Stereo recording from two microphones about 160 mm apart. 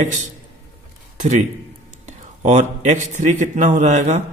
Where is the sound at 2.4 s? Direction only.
50° right (ahead or behind).